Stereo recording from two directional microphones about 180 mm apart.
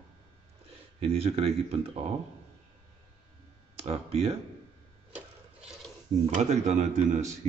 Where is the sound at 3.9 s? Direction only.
35° right (ahead or behind).